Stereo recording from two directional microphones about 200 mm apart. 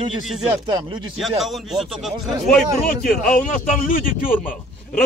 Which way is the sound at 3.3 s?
40° left (ahead or behind).